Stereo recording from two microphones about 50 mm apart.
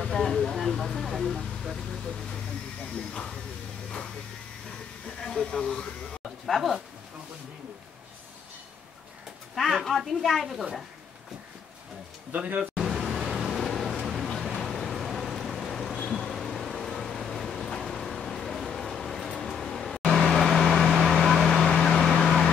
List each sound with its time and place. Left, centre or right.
0.0 s a sound: centre
5.2 s speech: centre
6.4 s a woman's voice: centre
9.6 s a woman's voice: centre
12.3 s speech: right
12.8 s vehicle: centre
19.4 s a sound: centre
20.3 s vehicle: centre
21.6 s vehicle: centre
22.1 s emergency vehicle: centre